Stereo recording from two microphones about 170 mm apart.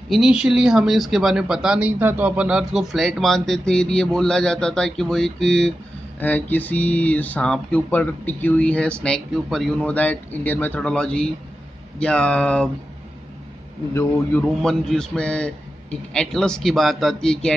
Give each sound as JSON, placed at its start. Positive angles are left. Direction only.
{"t": 0.1, "sound": "speech", "side_deg": -5}
{"t": 13.9, "sound": "speech", "side_deg": 15}
{"t": 14.6, "sound": "speech", "side_deg": 5}